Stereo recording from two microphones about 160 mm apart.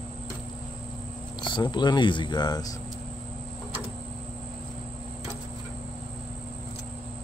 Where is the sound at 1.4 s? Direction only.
30° left (ahead or behind).